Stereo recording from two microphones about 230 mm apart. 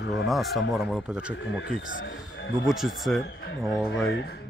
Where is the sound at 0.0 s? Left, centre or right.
Left.